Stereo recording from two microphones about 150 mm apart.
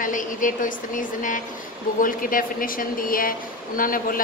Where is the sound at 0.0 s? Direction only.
60° left (ahead or behind).